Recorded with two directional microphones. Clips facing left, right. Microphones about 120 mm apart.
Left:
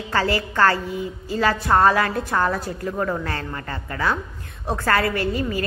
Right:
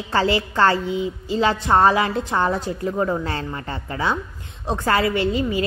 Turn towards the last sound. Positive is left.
turn(degrees=-20)  # may be behind; listen again after turning